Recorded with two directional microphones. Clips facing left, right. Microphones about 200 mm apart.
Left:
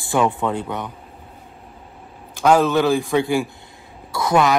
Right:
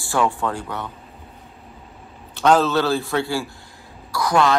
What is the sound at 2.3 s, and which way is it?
Speech, 10° left (ahead or behind).